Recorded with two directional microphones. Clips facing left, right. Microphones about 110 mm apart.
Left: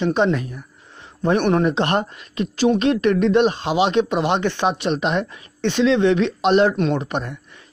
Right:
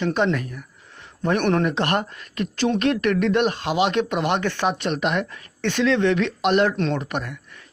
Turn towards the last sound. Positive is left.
turn(degrees=25)  # may be behind; listen again after turning